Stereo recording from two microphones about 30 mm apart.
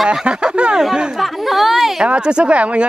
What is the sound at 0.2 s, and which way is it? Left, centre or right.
Speech, right.